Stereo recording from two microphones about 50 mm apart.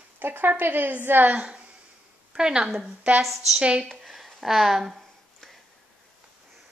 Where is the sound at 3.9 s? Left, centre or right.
Centre.